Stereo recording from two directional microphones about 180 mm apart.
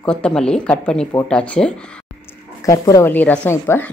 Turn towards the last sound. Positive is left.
turn(degrees=15)  # may be behind; listen again after turning